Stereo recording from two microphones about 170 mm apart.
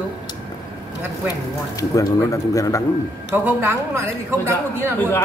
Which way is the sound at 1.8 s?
20° left (ahead or behind).